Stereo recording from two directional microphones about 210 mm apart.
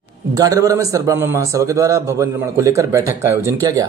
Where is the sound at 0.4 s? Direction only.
15° right (ahead or behind).